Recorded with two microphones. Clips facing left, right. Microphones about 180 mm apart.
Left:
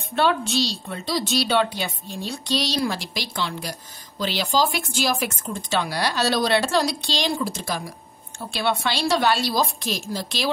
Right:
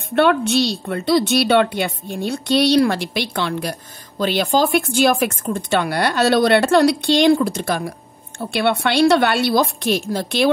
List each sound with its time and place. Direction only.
0.1 s speech: 60° right (ahead or behind)